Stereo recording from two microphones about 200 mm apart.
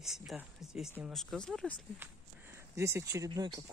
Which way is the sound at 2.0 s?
10° right (ahead or behind).